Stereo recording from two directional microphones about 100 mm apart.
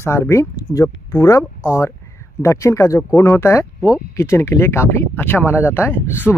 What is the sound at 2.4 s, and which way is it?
Speech, 30° left (ahead or behind).